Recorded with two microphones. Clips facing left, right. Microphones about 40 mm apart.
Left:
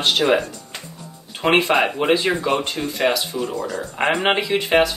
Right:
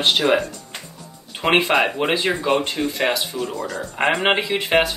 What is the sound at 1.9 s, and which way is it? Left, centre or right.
Speech, centre.